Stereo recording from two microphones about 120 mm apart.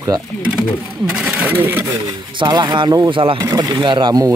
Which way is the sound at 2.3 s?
40° right (ahead or behind).